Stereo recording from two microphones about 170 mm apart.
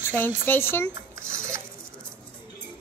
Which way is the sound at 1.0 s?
15° right (ahead or behind).